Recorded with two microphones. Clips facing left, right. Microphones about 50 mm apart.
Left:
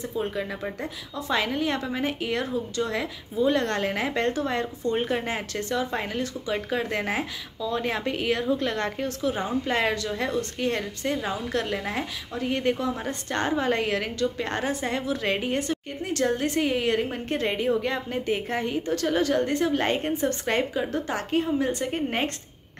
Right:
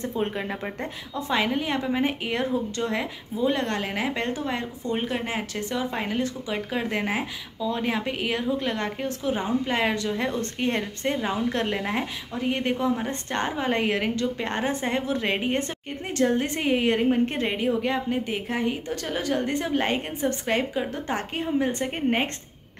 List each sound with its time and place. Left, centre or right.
0.1 s a woman's voice: right
1.1 s a woman's voice: centre